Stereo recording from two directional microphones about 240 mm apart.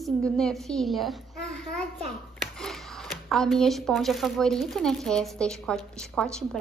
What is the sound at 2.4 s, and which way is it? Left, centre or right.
Speech, centre.